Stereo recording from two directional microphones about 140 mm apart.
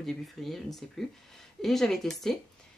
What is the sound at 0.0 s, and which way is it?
Speech, centre (ahead or behind).